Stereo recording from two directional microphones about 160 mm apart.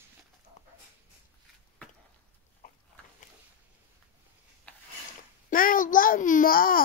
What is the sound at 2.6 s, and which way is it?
Dog, 65° left (ahead or behind).